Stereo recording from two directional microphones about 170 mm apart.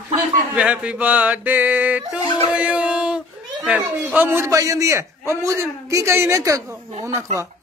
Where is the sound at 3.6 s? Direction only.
10° right (ahead or behind).